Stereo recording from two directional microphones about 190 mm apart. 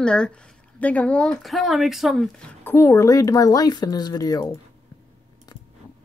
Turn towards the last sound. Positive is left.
turn(degrees=20)  # may be behind; listen again after turning